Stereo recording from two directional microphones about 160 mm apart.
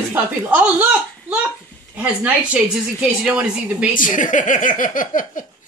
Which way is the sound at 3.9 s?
55° left (ahead or behind).